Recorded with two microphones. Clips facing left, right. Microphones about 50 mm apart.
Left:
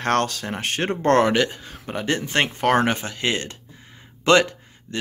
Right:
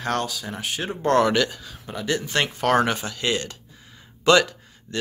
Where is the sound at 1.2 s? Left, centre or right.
Left.